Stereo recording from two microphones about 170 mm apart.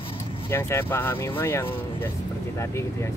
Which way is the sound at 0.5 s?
15° left (ahead or behind).